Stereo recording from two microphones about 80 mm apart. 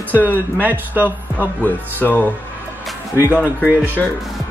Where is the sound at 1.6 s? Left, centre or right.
Left.